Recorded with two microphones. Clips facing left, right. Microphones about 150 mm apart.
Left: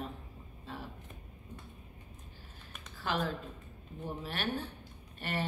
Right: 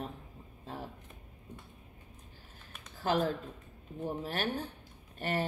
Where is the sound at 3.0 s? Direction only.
45° right (ahead or behind).